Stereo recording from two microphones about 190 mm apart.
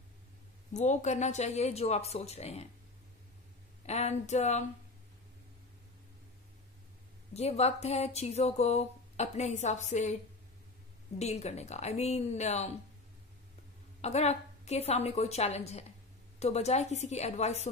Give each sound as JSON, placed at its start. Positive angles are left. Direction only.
{"t": 0.7, "sound": "speech", "side_deg": 40}
{"t": 3.8, "sound": "speech", "side_deg": 35}
{"t": 7.3, "sound": "speech", "side_deg": 35}
{"t": 11.1, "sound": "speech", "side_deg": 35}
{"t": 14.0, "sound": "speech", "side_deg": 35}